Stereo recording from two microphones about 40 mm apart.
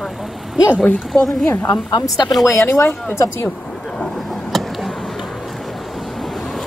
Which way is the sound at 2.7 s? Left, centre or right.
Left.